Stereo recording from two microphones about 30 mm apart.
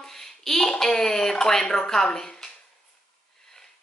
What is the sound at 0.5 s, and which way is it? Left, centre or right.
A woman's voice, centre.